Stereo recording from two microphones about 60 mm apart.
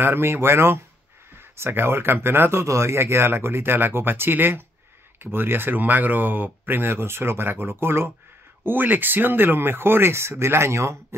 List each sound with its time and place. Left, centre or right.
0.0 s speech: right
2.6 s speech: right